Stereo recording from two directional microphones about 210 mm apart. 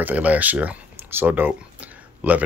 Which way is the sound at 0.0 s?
5° right (ahead or behind).